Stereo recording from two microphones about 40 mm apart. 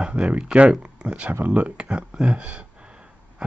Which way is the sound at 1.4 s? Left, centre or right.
Right.